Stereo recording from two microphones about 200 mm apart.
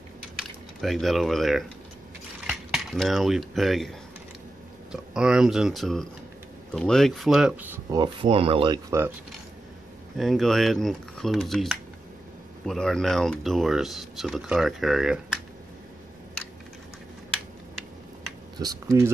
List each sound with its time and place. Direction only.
0.4 s speech: centre (ahead or behind)
2.4 s cutlery: centre (ahead or behind)
5.1 s speech: 5° right (ahead or behind)
8.0 s speech: 25° right (ahead or behind)
10.1 s speech: centre (ahead or behind)
18.6 s speech: 15° right (ahead or behind)